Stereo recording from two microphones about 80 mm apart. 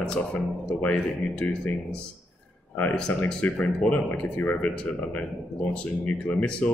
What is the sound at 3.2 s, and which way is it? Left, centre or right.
Speech, centre.